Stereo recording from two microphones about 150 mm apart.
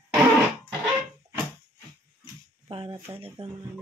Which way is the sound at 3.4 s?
35° right (ahead or behind).